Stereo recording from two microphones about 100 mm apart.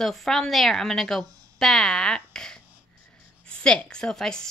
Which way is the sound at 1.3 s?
35° right (ahead or behind).